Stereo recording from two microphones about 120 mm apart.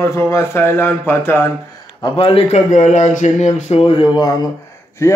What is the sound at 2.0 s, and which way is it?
Speech, 50° left (ahead or behind).